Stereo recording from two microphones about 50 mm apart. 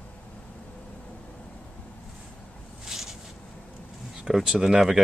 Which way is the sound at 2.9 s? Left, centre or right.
Centre.